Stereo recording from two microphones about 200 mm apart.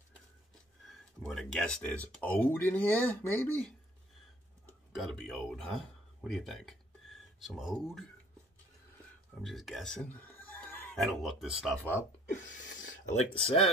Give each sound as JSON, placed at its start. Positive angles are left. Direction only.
{"t": 0.8, "sound": "speech", "side_deg": 0}
{"t": 4.9, "sound": "speech", "side_deg": 0}
{"t": 9.4, "sound": "a man's voice", "side_deg": 0}
{"t": 12.3, "sound": "speech", "side_deg": 40}